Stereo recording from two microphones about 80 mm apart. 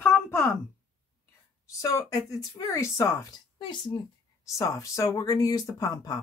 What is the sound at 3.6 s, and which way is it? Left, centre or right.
Speech, left.